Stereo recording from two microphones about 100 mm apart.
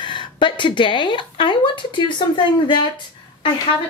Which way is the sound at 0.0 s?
50° left (ahead or behind).